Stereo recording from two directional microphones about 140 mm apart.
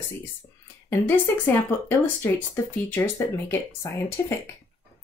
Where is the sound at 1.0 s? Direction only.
15° left (ahead or behind).